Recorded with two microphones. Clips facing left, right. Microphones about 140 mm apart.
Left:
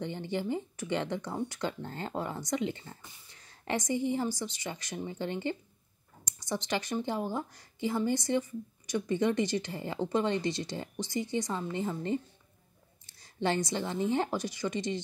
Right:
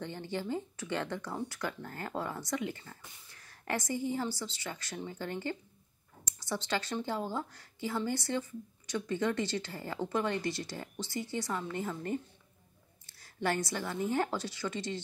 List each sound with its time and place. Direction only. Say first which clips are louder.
0.0 s a woman's voice: left 4 dB; 15° left (ahead or behind)